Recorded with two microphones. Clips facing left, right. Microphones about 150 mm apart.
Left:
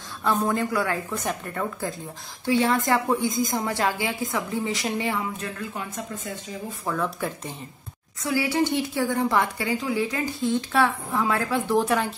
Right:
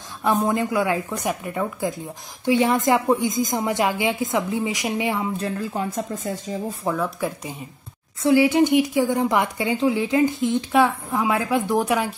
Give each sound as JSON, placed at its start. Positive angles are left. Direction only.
{"t": 0.2, "sound": "speech", "side_deg": -15}
{"t": 5.4, "sound": "speech", "side_deg": -35}
{"t": 6.9, "sound": "speech", "side_deg": -10}
{"t": 8.2, "sound": "speech", "side_deg": -20}